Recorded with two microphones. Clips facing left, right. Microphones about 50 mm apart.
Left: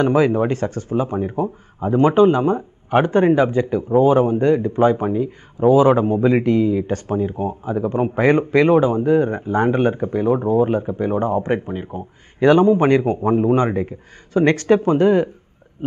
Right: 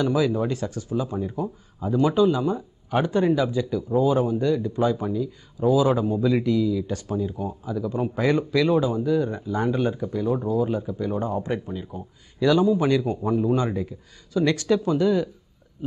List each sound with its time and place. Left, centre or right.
0.0 s speech: left